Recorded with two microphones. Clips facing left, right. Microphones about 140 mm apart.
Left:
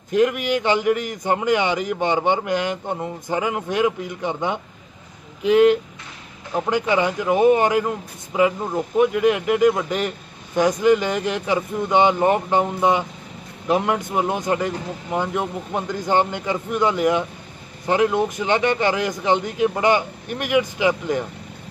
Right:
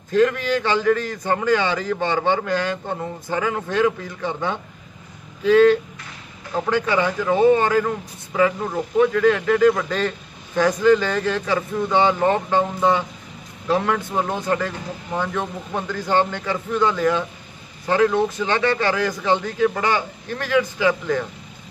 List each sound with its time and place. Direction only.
0.1 s a man's voice: 15° left (ahead or behind)